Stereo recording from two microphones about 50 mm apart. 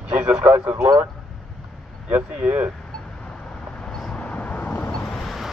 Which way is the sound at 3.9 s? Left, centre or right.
Centre.